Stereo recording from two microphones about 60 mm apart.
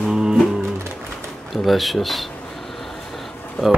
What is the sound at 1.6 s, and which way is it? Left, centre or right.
Speech, centre.